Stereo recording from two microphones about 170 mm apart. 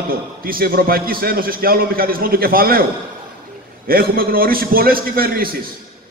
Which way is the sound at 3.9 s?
60° right (ahead or behind).